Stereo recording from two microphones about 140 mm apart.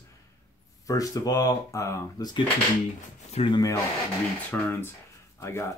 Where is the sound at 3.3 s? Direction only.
40° left (ahead or behind).